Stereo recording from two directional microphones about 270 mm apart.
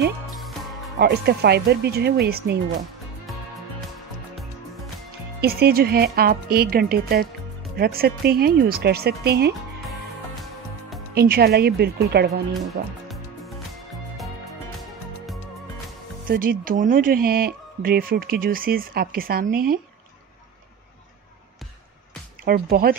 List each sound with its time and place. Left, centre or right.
0.9 s speech: right
5.4 s speech: right
11.1 s speech: right
13.1 s music: centre
16.3 s speech: right
22.4 s speech: right